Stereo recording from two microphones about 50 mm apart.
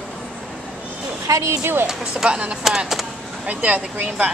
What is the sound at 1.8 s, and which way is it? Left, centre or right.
Speech, centre.